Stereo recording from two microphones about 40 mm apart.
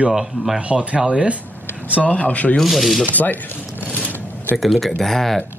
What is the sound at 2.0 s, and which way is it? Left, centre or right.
Speech, left.